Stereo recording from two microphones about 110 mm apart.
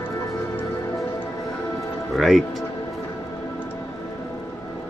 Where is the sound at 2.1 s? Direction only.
Centre (ahead or behind).